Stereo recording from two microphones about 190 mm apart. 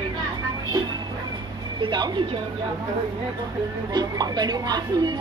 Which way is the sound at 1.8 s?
25° right (ahead or behind).